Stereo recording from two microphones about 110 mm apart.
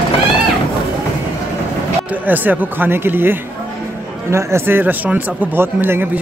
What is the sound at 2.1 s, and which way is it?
A man's voice, 15° right (ahead or behind).